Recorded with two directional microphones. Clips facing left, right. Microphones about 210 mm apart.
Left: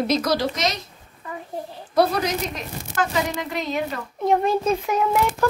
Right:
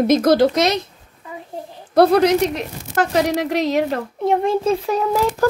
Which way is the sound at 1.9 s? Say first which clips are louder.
Right 8 dB; 60° right (ahead or behind).